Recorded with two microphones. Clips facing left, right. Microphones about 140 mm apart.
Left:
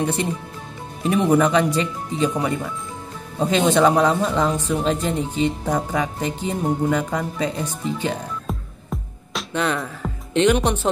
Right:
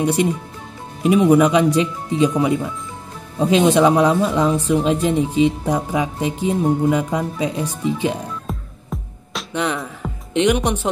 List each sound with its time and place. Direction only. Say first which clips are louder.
0.0 s speech: right 5 dB; 10° right (ahead or behind)
9.5 s music: right 1 dB; 15° right (ahead or behind)
10.3 s speech: even; 15° right (ahead or behind)